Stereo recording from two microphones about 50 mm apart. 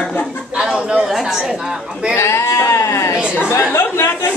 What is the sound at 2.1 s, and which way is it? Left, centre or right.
Speech, left.